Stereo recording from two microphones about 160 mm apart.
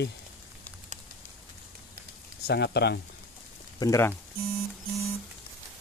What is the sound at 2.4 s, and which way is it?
Speech, 90° left.